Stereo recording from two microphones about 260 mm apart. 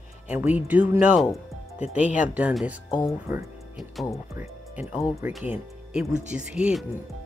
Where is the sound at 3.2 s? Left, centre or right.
Centre.